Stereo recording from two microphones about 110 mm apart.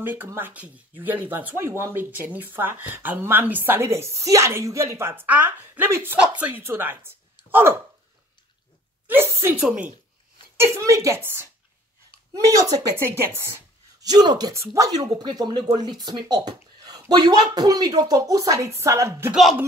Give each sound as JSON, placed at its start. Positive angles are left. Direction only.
{"t": 0.0, "sound": "speech", "side_deg": -15}
{"t": 9.0, "sound": "a sound", "side_deg": -20}
{"t": 9.6, "sound": "speech", "side_deg": -10}
{"t": 10.6, "sound": "speech", "side_deg": -30}
{"t": 12.3, "sound": "speech", "side_deg": -30}
{"t": 14.0, "sound": "speech", "side_deg": -40}
{"t": 14.5, "sound": "speech", "side_deg": -30}